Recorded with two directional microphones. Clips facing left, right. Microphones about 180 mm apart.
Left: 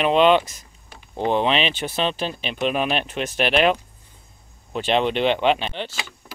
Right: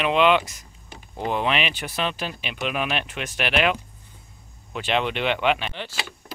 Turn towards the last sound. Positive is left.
turn(degrees=25)  # may be behind; listen again after turning